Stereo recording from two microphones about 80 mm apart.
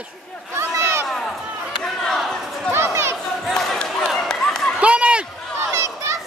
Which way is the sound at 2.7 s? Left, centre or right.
Right.